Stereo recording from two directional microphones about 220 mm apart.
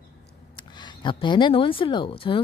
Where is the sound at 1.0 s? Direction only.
20° left (ahead or behind).